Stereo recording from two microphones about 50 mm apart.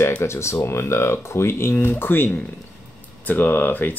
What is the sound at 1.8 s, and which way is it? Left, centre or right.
Speech, left.